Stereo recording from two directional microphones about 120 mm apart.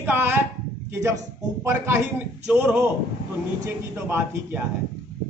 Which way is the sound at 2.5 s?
15° right (ahead or behind).